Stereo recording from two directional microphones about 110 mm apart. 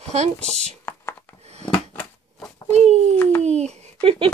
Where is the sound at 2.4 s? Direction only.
30° left (ahead or behind).